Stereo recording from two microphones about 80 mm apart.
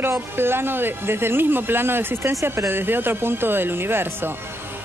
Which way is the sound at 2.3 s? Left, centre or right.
Right.